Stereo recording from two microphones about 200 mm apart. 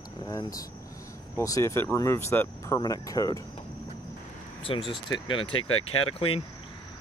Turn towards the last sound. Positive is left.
turn(degrees=30)  # may be behind; listen again after turning